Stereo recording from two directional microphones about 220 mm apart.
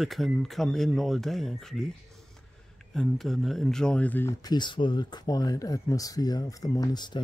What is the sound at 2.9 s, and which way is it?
Speech, centre (ahead or behind).